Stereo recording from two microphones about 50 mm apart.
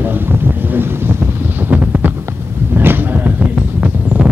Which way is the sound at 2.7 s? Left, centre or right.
Right.